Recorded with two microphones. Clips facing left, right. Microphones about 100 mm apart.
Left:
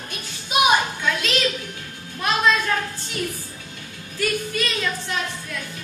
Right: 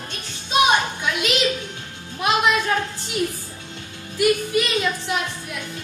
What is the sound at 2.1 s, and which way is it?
Music, 15° right (ahead or behind).